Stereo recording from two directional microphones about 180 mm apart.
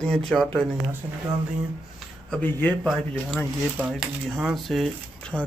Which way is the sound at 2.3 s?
5° left (ahead or behind).